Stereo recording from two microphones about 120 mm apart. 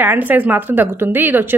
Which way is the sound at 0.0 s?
15° right (ahead or behind).